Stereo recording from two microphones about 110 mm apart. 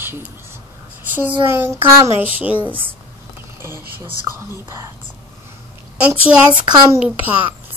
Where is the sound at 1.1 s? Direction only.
15° right (ahead or behind).